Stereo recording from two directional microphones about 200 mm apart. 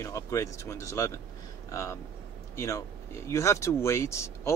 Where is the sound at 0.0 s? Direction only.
15° left (ahead or behind).